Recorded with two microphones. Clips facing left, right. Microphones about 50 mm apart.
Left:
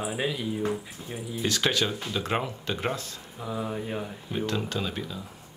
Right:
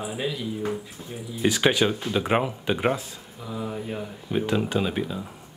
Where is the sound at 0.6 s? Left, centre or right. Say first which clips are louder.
Even; centre.